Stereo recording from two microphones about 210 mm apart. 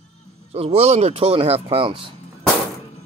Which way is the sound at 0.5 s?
30° right (ahead or behind).